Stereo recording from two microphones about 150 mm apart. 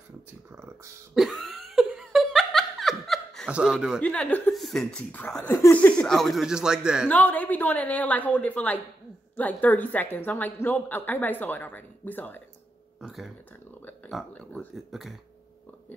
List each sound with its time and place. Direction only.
0.5 s a sound: 15° right (ahead or behind)
1.1 s laughter: centre (ahead or behind)
4.0 s a woman's voice: 10° left (ahead or behind)
7.1 s a woman's voice: 10° left (ahead or behind)
13.0 s speech: centre (ahead or behind)
14.3 s a woman's voice: 10° left (ahead or behind)
14.9 s speech: centre (ahead or behind)